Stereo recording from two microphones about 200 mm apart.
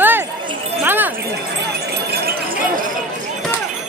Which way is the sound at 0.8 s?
10° right (ahead or behind).